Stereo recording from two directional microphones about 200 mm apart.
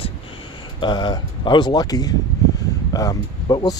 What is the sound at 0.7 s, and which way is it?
Speech, 25° left (ahead or behind).